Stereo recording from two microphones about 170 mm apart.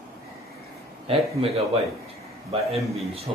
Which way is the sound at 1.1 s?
35° right (ahead or behind).